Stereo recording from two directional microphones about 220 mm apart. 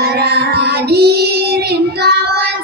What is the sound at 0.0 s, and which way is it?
Child singing, 45° right (ahead or behind).